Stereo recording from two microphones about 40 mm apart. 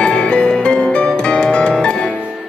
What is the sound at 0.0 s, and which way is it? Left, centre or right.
Music, left.